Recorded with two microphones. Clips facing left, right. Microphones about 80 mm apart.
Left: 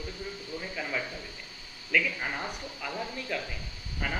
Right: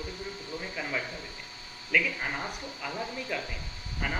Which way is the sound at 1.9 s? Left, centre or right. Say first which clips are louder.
Even; centre.